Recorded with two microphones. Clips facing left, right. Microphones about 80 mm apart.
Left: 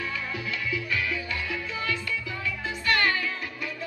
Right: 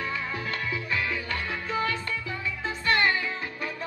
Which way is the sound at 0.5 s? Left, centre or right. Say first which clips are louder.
Left 2 dB; right.